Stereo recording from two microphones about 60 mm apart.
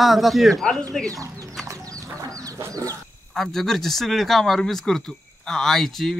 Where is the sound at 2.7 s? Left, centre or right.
Right.